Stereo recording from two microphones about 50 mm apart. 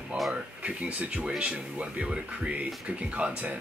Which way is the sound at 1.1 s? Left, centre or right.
Centre.